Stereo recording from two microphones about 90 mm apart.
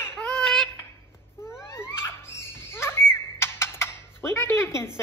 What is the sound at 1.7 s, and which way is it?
Squeal, 30° left (ahead or behind).